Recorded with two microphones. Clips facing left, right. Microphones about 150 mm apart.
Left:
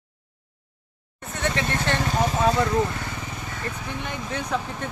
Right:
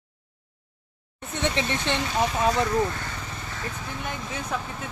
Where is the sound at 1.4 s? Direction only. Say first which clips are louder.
Even; 20° right (ahead or behind).